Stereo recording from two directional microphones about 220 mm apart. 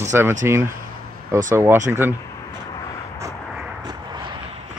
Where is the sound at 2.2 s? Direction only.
15° left (ahead or behind).